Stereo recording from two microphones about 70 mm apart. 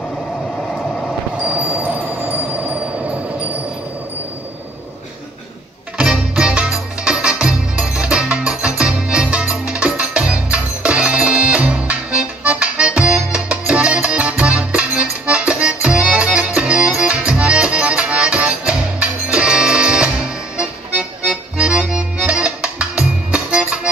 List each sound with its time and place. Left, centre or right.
5.9 s music: centre
20.5 s accordion: centre